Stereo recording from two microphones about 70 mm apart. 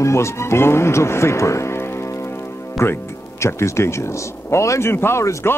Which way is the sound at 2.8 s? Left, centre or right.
Left.